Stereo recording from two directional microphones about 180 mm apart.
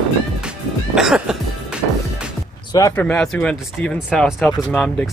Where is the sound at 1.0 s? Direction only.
5° right (ahead or behind).